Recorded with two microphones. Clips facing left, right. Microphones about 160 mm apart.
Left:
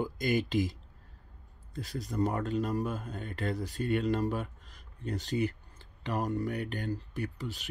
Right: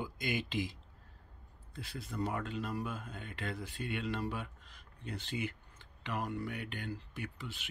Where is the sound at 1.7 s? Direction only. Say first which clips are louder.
Left 7 dB; 40° left (ahead or behind).